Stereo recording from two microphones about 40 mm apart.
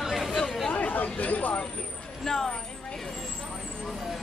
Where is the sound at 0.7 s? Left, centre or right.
Left.